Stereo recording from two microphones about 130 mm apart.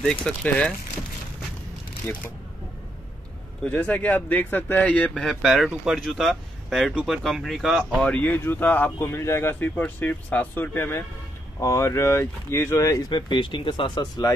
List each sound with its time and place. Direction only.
0.0 s speech: 5° left (ahead or behind)
2.1 s speech: 15° left (ahead or behind)
3.6 s speech: 10° left (ahead or behind); by 14.3 s 30° left (ahead or behind)